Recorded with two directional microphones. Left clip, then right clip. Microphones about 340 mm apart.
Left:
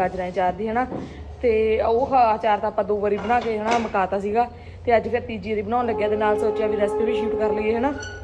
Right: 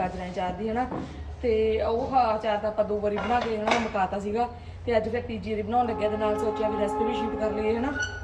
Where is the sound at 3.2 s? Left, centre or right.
Centre.